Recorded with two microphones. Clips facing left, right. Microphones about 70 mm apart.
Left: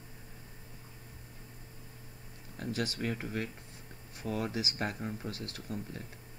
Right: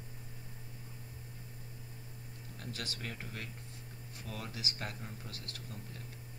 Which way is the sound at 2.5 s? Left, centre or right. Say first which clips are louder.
Left 9 dB; left.